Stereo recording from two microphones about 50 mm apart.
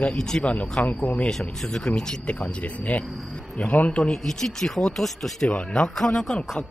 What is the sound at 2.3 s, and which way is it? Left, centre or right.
Speech, left.